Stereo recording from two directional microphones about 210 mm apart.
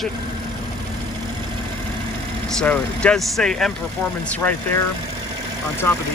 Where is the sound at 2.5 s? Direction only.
5° left (ahead or behind).